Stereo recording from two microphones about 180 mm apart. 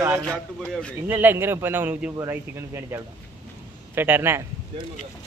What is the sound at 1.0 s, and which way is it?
A man's voice, 10° right (ahead or behind).